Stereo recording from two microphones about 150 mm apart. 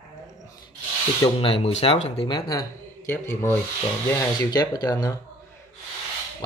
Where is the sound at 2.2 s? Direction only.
25° left (ahead or behind).